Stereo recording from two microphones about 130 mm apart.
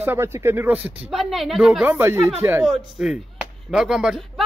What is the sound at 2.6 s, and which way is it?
Speech, 5° right (ahead or behind).